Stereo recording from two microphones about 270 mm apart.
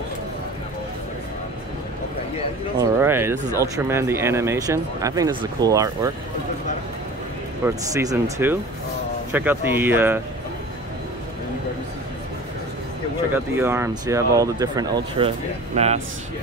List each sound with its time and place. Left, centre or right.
2.8 s speech: centre
7.6 s speech: centre
13.3 s speech: centre